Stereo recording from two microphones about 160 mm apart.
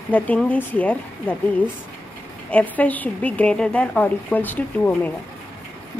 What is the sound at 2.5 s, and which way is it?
A woman's voice, 10° left (ahead or behind).